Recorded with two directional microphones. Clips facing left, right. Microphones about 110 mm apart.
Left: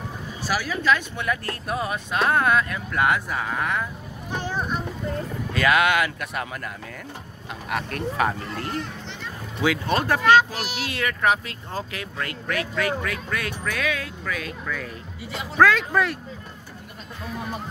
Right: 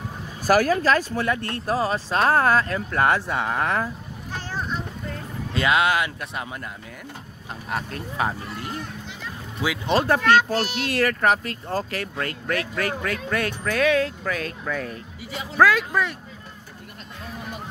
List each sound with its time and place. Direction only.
0.4 s speech: 45° right (ahead or behind)
4.3 s a sound: 15° left (ahead or behind)
5.5 s speech: 25° right (ahead or behind)
7.7 s speech: 25° right (ahead or behind)
9.2 s music: 5° right (ahead or behind)
9.8 s speech: 30° right (ahead or behind)
10.2 s speech: 10° left (ahead or behind)
10.8 s speech: 45° right (ahead or behind)
15.5 s speech: 5° right (ahead or behind)